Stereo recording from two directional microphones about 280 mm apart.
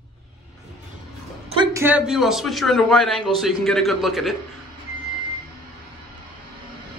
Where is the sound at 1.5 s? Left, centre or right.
Centre.